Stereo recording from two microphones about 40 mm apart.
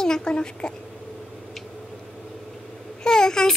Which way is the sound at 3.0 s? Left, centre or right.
Centre.